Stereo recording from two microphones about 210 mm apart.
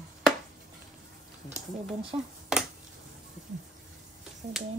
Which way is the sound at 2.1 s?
20° right (ahead or behind).